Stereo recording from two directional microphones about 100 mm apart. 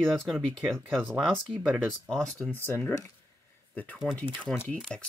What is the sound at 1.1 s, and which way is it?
Speech, 5° left (ahead or behind).